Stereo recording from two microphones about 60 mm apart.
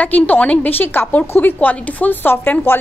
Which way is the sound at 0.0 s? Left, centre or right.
Left.